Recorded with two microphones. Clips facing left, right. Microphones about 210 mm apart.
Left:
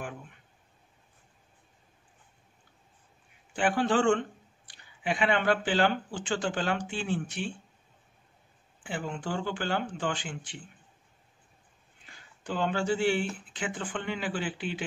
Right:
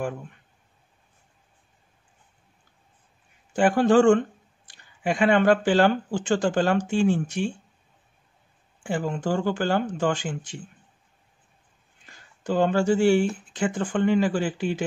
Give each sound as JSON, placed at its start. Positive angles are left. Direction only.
{"t": 3.5, "sound": "speech", "side_deg": -45}
{"t": 8.8, "sound": "speech", "side_deg": -45}
{"t": 12.1, "sound": "speech", "side_deg": -45}